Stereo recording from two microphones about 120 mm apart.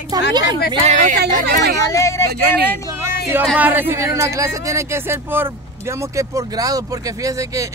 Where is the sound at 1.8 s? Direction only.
25° left (ahead or behind).